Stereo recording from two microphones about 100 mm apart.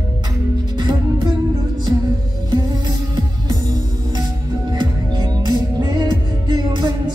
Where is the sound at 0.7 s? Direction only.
45° right (ahead or behind).